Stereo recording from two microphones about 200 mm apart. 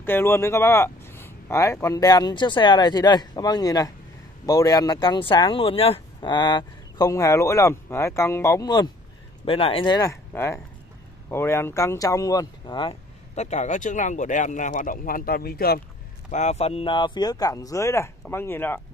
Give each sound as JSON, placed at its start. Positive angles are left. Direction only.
{"t": 0.0, "sound": "speech", "side_deg": 10}
{"t": 16.3, "sound": "speech", "side_deg": 35}